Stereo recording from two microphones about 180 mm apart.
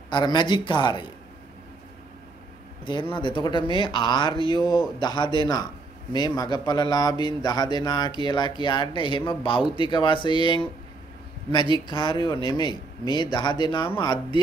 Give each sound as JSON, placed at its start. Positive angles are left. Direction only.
{"t": 0.1, "sound": "speech", "side_deg": 25}
{"t": 2.8, "sound": "speech", "side_deg": 25}
{"t": 11.7, "sound": "speech", "side_deg": 30}